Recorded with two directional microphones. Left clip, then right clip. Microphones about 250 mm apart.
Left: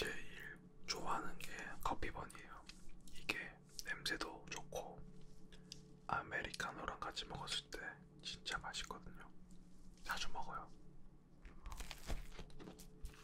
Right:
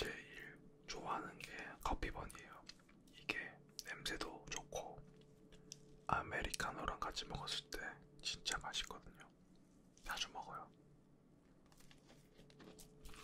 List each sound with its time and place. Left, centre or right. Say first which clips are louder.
0.0 s whispering: left 1 dB; centre
0.8 s whispering: left 3 dB; centre
1.1 s whispering: left 1 dB; centre
6.0 s whispering: right 2 dB; right; by 9.3 s centre
10.0 s a sound: left 1 dB; centre